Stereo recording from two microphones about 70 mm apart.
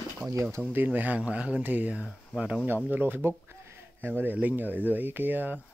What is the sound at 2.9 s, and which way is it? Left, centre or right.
Speech, right.